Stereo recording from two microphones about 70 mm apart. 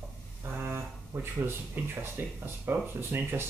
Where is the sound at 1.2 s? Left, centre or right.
Right.